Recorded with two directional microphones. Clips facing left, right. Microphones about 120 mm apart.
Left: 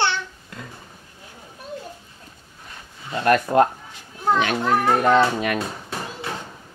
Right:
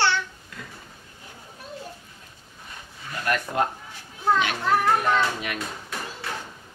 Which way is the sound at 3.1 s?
25° left (ahead or behind).